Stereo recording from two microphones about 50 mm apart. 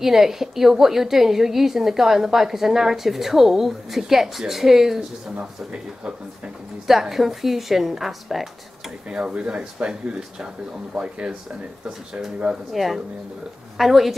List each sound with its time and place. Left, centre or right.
0.0 s a woman's voice: centre
6.9 s a woman's voice: centre
9.1 s a woman's voice: centre
11.0 s speech: right
12.7 s a woman's voice: centre